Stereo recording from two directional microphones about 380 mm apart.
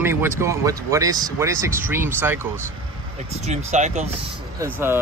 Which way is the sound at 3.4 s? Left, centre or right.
Centre.